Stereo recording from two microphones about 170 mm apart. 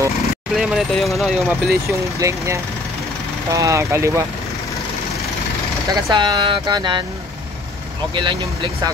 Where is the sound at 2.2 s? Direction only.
15° right (ahead or behind).